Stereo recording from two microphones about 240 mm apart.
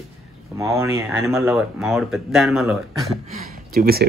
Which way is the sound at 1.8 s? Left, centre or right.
Centre.